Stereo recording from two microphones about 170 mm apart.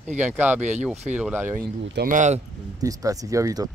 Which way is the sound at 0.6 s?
45° right (ahead or behind).